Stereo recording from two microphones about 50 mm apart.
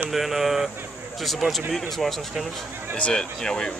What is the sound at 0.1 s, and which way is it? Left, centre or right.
Speech, centre.